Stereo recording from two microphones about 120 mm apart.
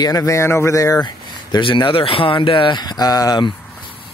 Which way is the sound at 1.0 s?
40° left (ahead or behind).